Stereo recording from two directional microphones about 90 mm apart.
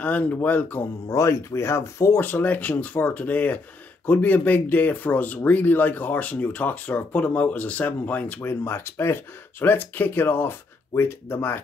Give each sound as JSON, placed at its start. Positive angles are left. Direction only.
{"t": 0.0, "sound": "speech", "side_deg": 20}
{"t": 1.0, "sound": "speech", "side_deg": 35}